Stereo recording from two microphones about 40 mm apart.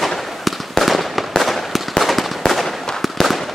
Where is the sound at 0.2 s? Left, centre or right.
Centre.